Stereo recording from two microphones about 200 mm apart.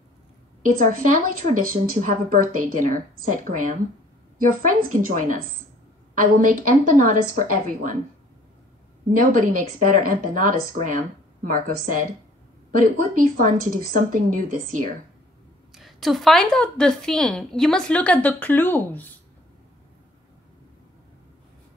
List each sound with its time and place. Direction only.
0.7 s a woman's voice: 40° right (ahead or behind)
9.2 s a woman's voice: 40° right (ahead or behind)
15.7 s a woman's voice: centre (ahead or behind)